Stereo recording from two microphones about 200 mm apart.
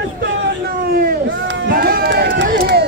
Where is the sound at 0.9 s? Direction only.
50° right (ahead or behind).